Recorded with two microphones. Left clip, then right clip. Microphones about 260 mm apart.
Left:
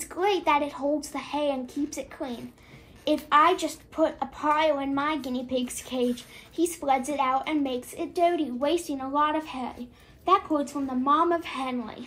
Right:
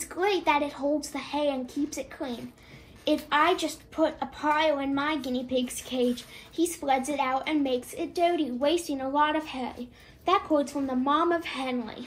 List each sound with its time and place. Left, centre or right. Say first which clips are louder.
0.1 s a child's voice: left 1 dB; left